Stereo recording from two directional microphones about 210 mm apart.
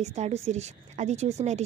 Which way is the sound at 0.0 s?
30° right (ahead or behind).